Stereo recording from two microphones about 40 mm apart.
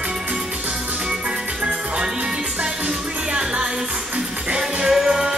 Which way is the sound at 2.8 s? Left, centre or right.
Right.